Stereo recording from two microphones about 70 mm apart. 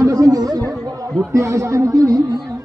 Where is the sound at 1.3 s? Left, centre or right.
Right.